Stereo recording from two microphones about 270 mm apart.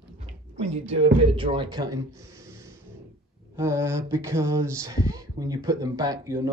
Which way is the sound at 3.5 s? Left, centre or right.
Centre.